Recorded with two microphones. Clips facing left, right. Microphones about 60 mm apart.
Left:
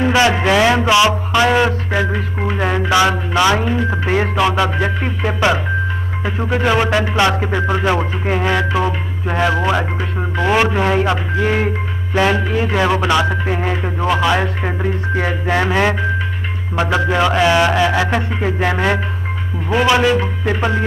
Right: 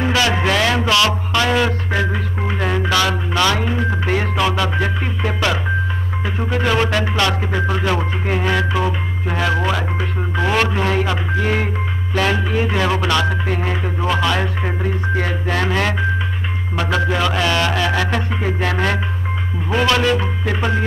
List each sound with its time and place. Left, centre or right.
0.1 s a man's voice: left
5.0 s music: left
6.6 s speech: centre
7.6 s music: left
8.4 s speech: centre
12.4 s speech: left
12.7 s speech: centre